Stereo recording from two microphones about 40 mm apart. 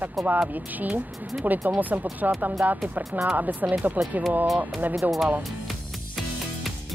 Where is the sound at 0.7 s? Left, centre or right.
Right.